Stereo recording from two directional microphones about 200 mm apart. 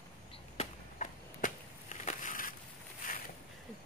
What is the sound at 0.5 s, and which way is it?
Crushing, 40° left (ahead or behind).